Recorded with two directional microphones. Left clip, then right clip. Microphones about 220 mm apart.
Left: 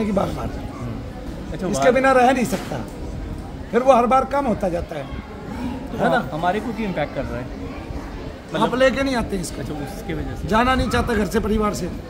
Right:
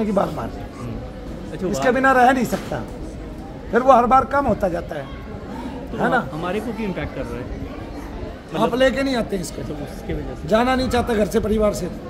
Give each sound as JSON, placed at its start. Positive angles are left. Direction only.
{"t": 0.0, "sound": "a man's voice", "side_deg": -10}
{"t": 1.7, "sound": "a man's voice", "side_deg": -5}
{"t": 3.7, "sound": "a man's voice", "side_deg": -10}
{"t": 6.4, "sound": "speech", "side_deg": 25}
{"t": 8.5, "sound": "a man's voice", "side_deg": -5}
{"t": 10.5, "sound": "a man's voice", "side_deg": 0}